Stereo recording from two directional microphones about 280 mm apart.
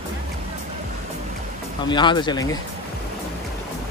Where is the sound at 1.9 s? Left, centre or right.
Centre.